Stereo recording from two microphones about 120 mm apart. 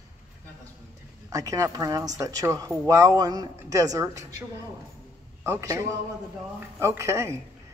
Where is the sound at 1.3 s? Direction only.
30° right (ahead or behind).